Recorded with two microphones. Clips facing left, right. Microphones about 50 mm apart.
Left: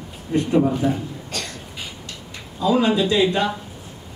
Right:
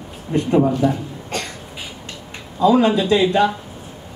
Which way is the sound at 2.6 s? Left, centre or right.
Right.